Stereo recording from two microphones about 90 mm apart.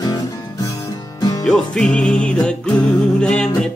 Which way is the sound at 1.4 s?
10° left (ahead or behind).